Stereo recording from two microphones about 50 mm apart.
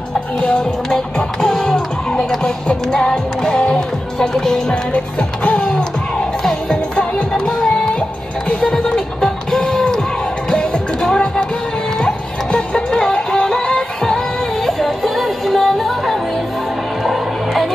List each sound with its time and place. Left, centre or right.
0.4 s music: centre
4.9 s music: left
5.7 s music: centre
12.4 s music: left
13.0 s music: centre